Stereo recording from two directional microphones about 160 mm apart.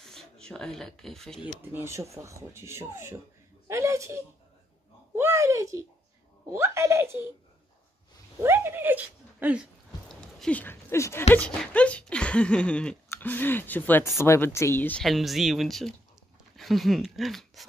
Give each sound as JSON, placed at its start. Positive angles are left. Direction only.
{"t": 0.0, "sound": "speech", "side_deg": 0}
{"t": 1.6, "sound": "speech", "side_deg": -15}
{"t": 5.1, "sound": "a sound", "side_deg": -15}
{"t": 6.5, "sound": "speech", "side_deg": -15}
{"t": 8.4, "sound": "speech", "side_deg": -15}